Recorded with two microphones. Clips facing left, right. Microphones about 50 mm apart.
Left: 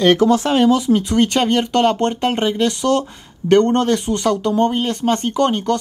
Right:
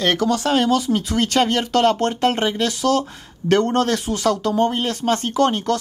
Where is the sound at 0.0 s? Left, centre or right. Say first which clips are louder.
Left 6 dB; centre.